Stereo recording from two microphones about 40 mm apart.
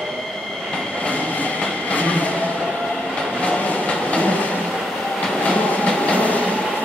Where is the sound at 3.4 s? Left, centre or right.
Left.